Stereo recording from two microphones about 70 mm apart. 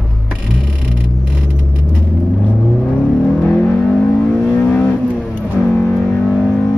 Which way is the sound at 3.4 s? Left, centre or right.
Left.